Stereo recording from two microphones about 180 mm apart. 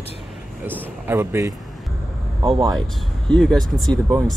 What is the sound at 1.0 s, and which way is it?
Speech, 15° right (ahead or behind).